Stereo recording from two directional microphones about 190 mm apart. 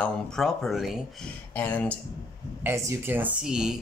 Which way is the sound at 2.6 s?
15° right (ahead or behind).